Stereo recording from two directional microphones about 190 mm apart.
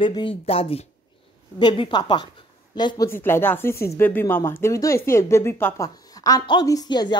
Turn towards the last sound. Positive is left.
turn(degrees=20)  # may be behind; listen again after turning